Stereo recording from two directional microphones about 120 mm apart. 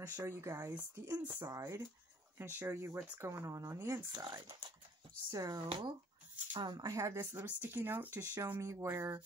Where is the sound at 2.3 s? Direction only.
20° right (ahead or behind).